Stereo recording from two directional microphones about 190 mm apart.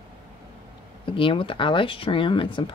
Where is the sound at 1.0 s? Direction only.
25° left (ahead or behind).